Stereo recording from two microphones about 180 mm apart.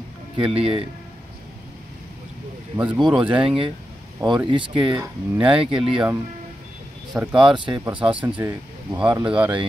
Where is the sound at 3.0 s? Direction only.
5° right (ahead or behind).